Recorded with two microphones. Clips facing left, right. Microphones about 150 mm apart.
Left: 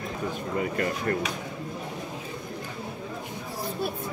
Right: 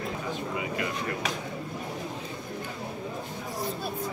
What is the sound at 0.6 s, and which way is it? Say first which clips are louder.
Speech: left 4 dB; 50° left (ahead or behind).